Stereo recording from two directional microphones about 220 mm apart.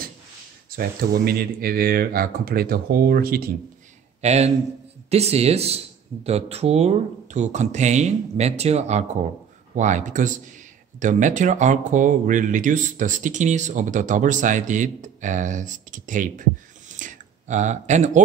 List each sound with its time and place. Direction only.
0.7 s speech: 40° right (ahead or behind)
4.2 s a man's voice: 30° right (ahead or behind)
16.9 s a sound: 35° right (ahead or behind)